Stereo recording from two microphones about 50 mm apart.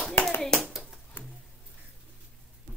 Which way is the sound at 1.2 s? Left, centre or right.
Left.